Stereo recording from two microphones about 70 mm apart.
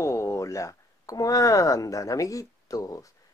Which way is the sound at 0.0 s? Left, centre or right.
Left.